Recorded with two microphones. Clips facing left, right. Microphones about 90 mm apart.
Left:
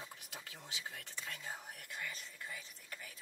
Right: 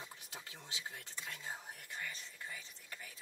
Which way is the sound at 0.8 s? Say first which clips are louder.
Left 1 dB; 15° right (ahead or behind).